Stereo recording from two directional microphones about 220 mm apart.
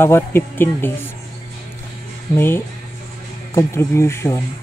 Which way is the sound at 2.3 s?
10° left (ahead or behind).